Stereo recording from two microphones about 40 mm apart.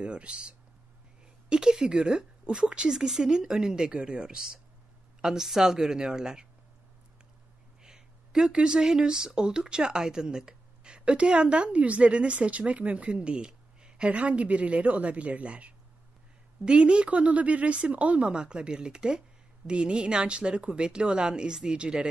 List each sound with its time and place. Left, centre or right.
0.0 s speech: right
1.5 s speech: centre
7.8 s speech: centre; by 15.7 s right
16.6 s speech: right